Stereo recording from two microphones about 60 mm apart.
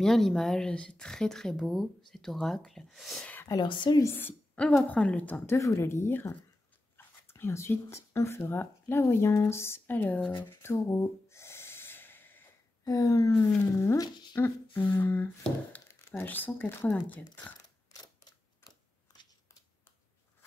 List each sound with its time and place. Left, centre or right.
0.0 s speech: centre
3.4 s speech: left
4.7 s a woman's voice: left
5.5 s speech: left
7.0 s dog: left
7.9 s speech: left
8.4 s speech: left
9.8 s a sound: left
10.5 s snort: left
12.8 s speech: left
14.7 s a sound: left
15.9 s a sound: left
16.3 s a sound: left
16.9 s a woman's voice: left